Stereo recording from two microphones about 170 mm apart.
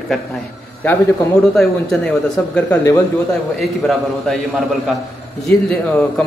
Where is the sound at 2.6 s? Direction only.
15° left (ahead or behind).